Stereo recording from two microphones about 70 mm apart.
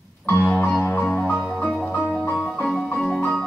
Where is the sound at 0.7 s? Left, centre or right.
Left.